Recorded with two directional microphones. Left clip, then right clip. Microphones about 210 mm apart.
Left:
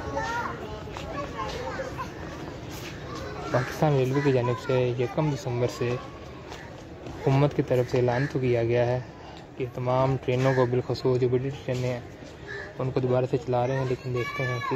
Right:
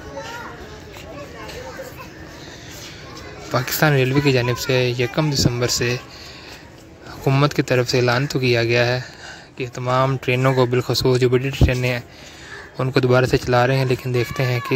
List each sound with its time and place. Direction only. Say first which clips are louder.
3.8 s speech: right 8 dB; 20° right (ahead or behind)
7.2 s speech: right 6 dB; 20° right (ahead or behind)